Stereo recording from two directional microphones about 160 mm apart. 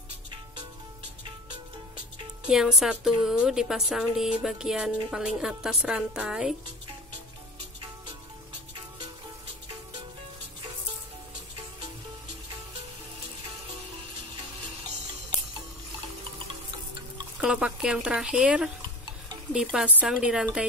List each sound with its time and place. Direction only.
2.4 s speech: 5° right (ahead or behind)
17.4 s speech: 5° right (ahead or behind)